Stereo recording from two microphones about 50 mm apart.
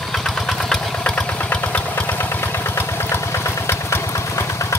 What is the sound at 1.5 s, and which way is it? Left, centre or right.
Vehicle, left.